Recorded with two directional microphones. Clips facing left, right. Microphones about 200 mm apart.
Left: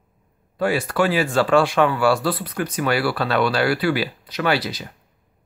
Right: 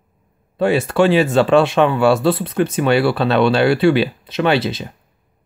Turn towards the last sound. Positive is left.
turn(degrees=-25)  # may be behind; listen again after turning